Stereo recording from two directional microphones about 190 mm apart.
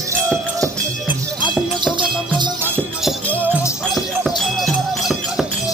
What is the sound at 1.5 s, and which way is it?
Music, 25° right (ahead or behind).